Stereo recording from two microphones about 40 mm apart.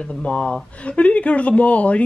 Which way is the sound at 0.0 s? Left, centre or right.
Left.